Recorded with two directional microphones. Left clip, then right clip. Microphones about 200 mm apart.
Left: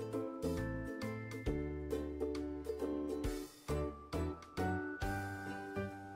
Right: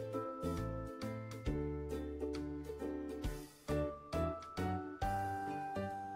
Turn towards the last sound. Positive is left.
turn(degrees=0)  # may be behind; listen again after turning